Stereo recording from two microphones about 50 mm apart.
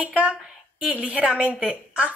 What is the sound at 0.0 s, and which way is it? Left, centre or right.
Speech, right.